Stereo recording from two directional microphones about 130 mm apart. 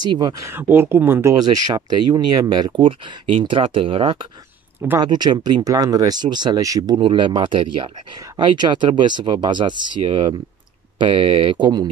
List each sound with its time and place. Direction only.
0.0 s speech: 35° right (ahead or behind); by 1.3 s 15° right (ahead or behind)
1.3 s speech: 30° right (ahead or behind); by 4.3 s 45° right (ahead or behind)
4.9 s speech: 35° right (ahead or behind)
7.0 s speech: 40° right (ahead or behind)